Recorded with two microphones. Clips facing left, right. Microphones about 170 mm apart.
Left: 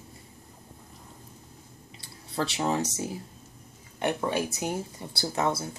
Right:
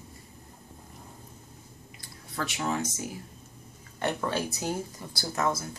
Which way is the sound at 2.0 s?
25° left (ahead or behind).